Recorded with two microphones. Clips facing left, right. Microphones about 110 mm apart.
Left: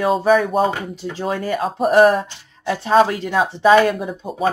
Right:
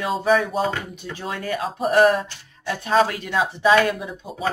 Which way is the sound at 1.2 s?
35° left (ahead or behind).